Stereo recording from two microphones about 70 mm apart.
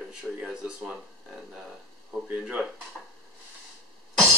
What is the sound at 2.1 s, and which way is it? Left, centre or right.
Speech, centre.